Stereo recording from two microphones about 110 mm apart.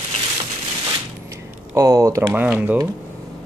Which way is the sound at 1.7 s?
30° right (ahead or behind).